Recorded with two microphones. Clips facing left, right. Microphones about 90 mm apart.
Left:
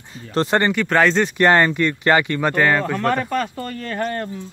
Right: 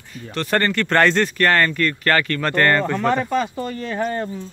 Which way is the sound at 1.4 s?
20° left (ahead or behind).